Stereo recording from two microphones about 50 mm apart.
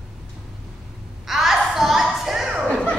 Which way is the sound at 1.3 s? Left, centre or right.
Centre.